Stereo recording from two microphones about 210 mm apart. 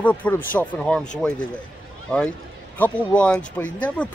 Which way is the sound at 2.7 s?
5° left (ahead or behind).